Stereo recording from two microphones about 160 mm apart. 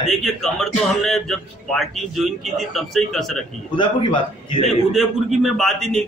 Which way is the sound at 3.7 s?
30° left (ahead or behind).